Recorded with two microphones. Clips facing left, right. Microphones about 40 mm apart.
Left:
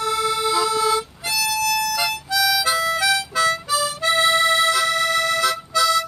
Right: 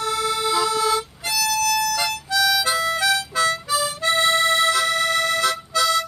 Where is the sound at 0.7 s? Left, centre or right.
Left.